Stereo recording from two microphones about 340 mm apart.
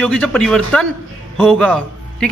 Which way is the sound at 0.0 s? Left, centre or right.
Centre.